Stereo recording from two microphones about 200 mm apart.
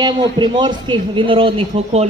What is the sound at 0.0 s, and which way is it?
A man's voice, 20° right (ahead or behind).